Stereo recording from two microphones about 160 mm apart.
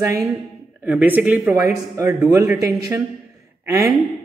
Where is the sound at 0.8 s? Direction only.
10° right (ahead or behind).